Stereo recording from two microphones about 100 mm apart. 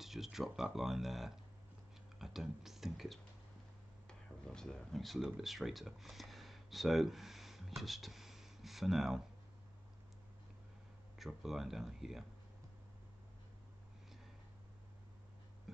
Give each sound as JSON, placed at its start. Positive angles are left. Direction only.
{"t": 0.0, "sound": "speech", "side_deg": 0}
{"t": 4.1, "sound": "speech", "side_deg": 10}
{"t": 11.1, "sound": "speech", "side_deg": 0}